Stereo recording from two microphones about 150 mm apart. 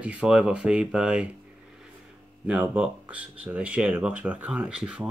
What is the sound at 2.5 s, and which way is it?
Speech, 10° right (ahead or behind).